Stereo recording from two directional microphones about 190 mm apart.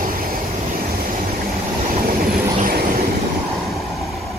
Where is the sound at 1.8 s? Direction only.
50° right (ahead or behind).